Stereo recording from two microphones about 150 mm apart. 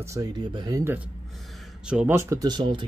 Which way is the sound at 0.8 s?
10° right (ahead or behind).